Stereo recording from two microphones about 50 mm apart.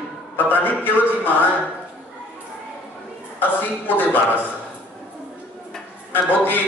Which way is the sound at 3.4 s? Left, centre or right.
Left.